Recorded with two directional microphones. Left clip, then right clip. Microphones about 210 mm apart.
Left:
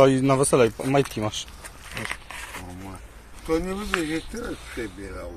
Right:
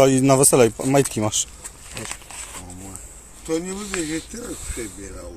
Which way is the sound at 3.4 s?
5° right (ahead or behind).